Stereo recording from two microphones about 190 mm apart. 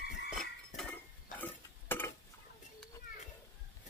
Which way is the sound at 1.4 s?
10° left (ahead or behind).